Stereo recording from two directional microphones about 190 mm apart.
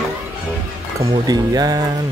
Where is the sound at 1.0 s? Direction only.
20° right (ahead or behind).